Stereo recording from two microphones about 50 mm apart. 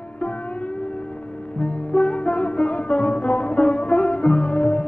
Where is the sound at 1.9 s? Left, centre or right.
Left.